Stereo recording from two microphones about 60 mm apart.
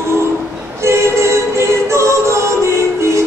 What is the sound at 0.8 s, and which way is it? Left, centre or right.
A capella, right.